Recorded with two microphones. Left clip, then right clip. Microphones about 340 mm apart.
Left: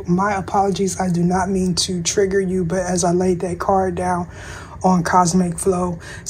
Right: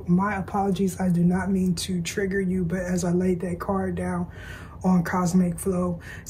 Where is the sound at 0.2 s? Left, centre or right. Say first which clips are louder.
Left 10 dB; centre.